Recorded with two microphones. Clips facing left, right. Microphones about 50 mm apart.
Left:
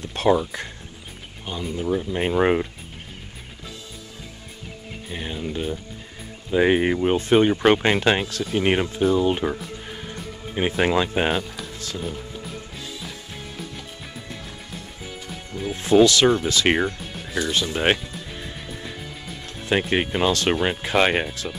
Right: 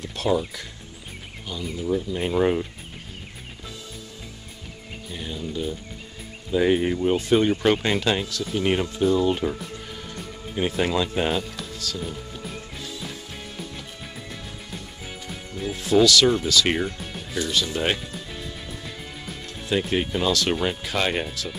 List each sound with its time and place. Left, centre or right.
0.0 s speech: left
5.1 s speech: left
9.0 s speech: left
15.7 s speech: left
19.9 s speech: left